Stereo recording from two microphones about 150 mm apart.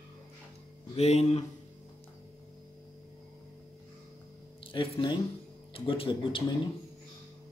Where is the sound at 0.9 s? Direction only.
45° left (ahead or behind).